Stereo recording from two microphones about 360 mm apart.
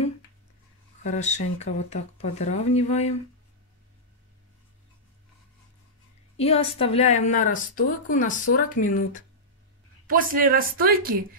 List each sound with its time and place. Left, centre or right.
1.0 s speech: centre
6.3 s a woman's voice: centre
10.0 s a woman's voice: right